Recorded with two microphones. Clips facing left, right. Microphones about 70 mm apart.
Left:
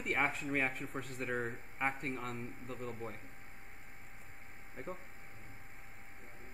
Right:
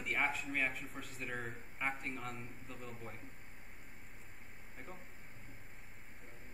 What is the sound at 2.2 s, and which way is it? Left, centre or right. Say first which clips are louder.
Speech: left 4 dB; centre.